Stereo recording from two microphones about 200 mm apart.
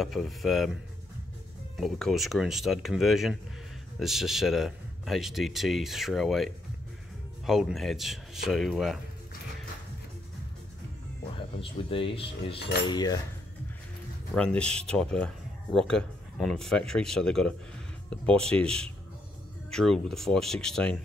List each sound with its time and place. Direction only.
0.0 s speech: centre (ahead or behind)
1.8 s speech: centre (ahead or behind)
11.3 s speech: 25° left (ahead or behind)
12.8 s cutlery: 20° left (ahead or behind)
14.3 s speech: 5° left (ahead or behind)